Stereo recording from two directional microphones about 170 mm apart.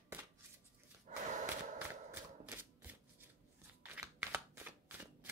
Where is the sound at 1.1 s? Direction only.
50° right (ahead or behind).